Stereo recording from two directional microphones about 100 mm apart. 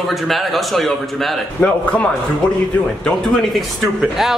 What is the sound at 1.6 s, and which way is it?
Speech, 15° left (ahead or behind).